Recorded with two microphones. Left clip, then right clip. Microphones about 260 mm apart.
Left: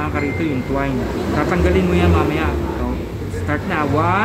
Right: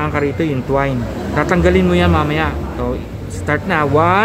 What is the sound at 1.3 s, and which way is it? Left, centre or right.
A man's voice, right.